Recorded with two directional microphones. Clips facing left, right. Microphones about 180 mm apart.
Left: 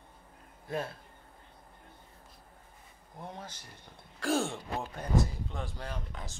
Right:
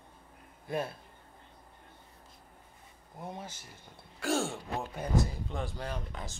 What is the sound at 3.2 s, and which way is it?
Speech, 10° right (ahead or behind).